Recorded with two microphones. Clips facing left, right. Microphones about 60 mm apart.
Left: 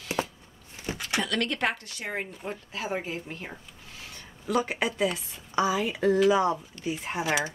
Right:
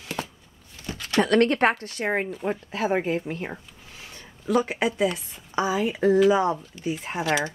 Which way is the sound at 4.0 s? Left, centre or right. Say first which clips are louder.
Right 1 dB; right.